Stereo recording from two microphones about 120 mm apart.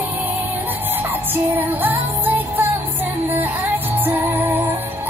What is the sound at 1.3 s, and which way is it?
Music, 15° right (ahead or behind).